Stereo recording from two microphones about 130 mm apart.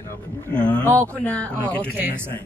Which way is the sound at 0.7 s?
10° left (ahead or behind).